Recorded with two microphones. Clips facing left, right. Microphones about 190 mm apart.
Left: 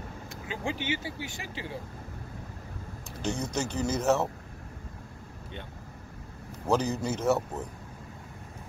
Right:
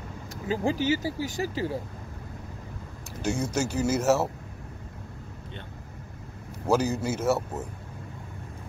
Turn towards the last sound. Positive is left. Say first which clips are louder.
# right 1 dB
turn(degrees=-5)  # may be behind; listen again after turning